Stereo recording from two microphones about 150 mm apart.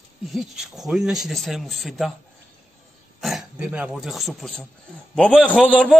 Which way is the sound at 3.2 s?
5° right (ahead or behind).